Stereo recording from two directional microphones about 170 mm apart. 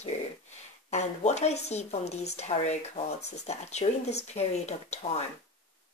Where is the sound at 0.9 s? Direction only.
40° left (ahead or behind).